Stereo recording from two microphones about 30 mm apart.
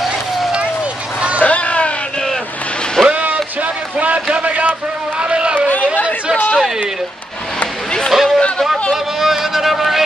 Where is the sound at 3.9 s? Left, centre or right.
Right.